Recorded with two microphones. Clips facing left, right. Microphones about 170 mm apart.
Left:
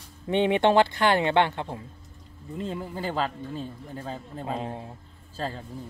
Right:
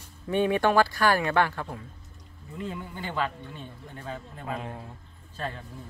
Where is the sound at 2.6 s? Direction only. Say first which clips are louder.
Left 4 dB; 35° left (ahead or behind).